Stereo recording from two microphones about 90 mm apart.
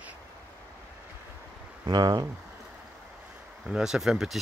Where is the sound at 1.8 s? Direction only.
50° right (ahead or behind).